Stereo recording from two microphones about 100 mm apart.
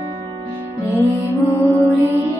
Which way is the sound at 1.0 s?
30° right (ahead or behind).